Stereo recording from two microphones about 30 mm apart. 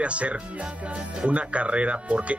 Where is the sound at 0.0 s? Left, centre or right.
Right.